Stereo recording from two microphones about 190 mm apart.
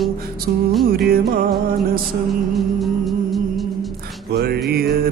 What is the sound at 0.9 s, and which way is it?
Music, 55° right (ahead or behind).